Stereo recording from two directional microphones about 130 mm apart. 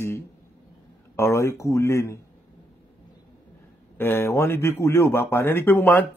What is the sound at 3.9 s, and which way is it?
A man's voice, 20° left (ahead or behind).